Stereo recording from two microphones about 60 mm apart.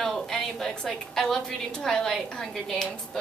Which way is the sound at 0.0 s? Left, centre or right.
Centre.